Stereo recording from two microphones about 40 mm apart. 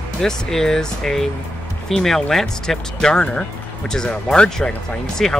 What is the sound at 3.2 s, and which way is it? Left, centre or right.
Speech, left.